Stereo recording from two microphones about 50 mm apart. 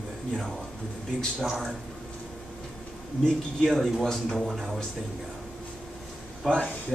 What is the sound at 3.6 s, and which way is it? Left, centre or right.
Speech, centre.